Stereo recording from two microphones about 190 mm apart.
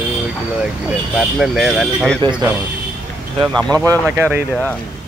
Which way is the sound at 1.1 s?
Centre (ahead or behind).